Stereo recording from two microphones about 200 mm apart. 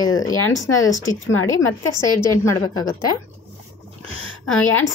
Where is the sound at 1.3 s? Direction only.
90° left.